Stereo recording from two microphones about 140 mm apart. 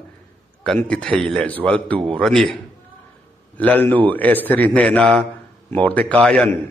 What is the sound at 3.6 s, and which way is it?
A man's voice, 10° left (ahead or behind).